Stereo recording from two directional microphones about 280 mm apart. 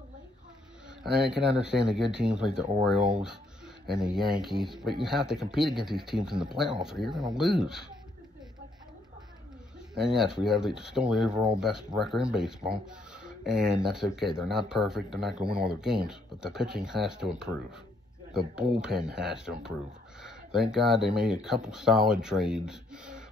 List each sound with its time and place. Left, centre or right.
1.0 s speech: centre
9.9 s speech: centre